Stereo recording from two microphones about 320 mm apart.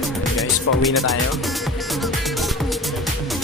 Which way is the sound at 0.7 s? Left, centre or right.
Left.